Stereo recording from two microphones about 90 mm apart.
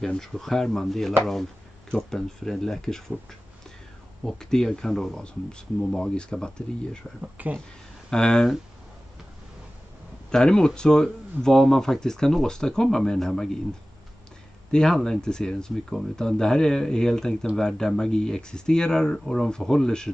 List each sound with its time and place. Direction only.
0.0 s speech: 5° left (ahead or behind)
7.2 s speech: 15° right (ahead or behind)
8.1 s speech: 5° left (ahead or behind)
10.3 s speech: 10° left (ahead or behind)
14.7 s speech: 5° left (ahead or behind)